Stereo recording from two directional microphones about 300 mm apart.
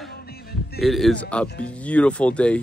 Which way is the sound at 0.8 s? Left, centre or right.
Centre.